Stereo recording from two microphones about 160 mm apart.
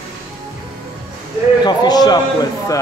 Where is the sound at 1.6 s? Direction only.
25° left (ahead or behind).